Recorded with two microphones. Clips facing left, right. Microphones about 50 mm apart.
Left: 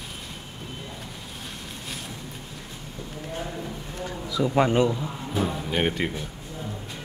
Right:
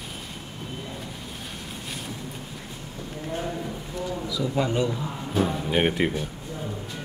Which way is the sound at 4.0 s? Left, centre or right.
Left.